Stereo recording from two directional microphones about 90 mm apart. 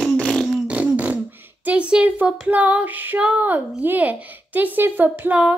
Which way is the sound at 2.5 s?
15° right (ahead or behind).